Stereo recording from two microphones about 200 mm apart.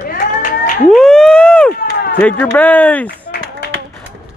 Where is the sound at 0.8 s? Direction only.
5° left (ahead or behind).